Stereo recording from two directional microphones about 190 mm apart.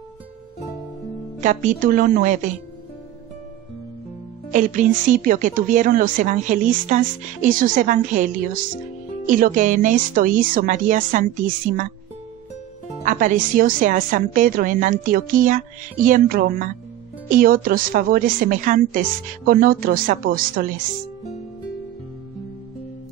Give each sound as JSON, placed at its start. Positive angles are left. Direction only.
{"t": 1.4, "sound": "a woman's voice", "side_deg": -40}
{"t": 4.5, "sound": "a woman's voice", "side_deg": -40}
{"t": 13.0, "sound": "a woman's voice", "side_deg": -45}